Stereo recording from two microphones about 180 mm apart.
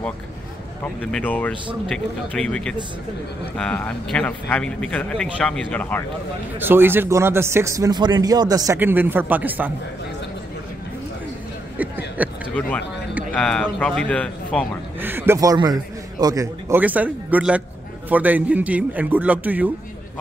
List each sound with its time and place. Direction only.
1.1 s speech: 10° left (ahead or behind)
6.6 s speech: 10° right (ahead or behind)
8.7 s speech: 10° right (ahead or behind)
12.2 s speech: 10° right (ahead or behind)
12.5 s speech: 10° left (ahead or behind)
15.0 s a man's voice: 10° right (ahead or behind)